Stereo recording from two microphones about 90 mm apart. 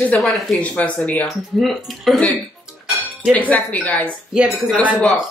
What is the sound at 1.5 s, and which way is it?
Speech, centre (ahead or behind).